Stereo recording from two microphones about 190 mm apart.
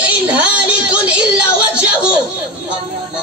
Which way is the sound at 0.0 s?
5° right (ahead or behind).